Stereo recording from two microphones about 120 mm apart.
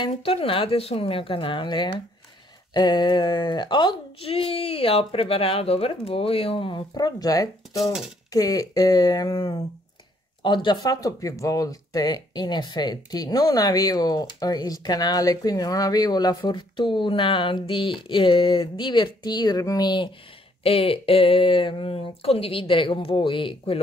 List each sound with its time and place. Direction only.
0.0 s a woman's voice: 50° left (ahead or behind)
6.9 s speech: 35° left (ahead or behind)
7.7 s speech: centre (ahead or behind)
8.3 s speech: 30° left (ahead or behind)
20.6 s a woman's voice: 55° left (ahead or behind)